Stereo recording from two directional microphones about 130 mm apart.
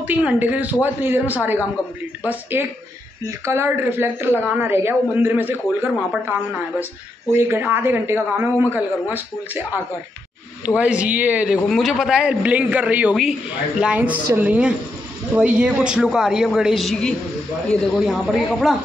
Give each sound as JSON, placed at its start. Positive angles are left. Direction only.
{"t": 0.0, "sound": "a man's voice", "side_deg": -10}
{"t": 7.3, "sound": "a man's voice", "side_deg": -15}
{"t": 10.8, "sound": "a man's voice", "side_deg": -10}